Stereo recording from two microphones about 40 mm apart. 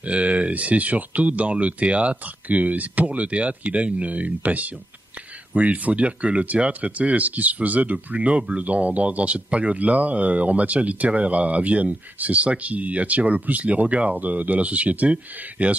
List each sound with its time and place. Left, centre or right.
0.0 s speech: right